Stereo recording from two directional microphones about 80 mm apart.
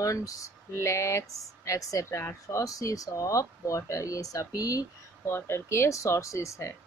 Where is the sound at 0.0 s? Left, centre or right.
Left.